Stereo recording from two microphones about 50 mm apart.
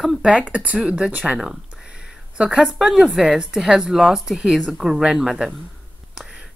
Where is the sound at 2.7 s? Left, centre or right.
Centre.